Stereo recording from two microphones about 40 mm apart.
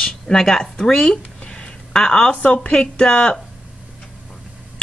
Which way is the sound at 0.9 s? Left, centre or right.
Left.